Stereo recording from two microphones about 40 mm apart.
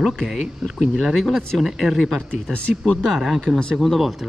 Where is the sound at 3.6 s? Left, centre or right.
Centre.